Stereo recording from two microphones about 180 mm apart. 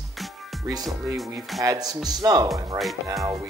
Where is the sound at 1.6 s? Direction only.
20° right (ahead or behind).